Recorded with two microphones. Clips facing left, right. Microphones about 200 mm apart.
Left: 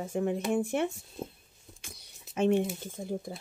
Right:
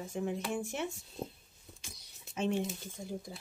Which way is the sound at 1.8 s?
60° left (ahead or behind).